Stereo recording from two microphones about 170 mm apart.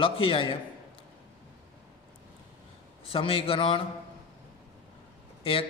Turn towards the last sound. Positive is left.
turn(degrees=35)  # may be behind; listen again after turning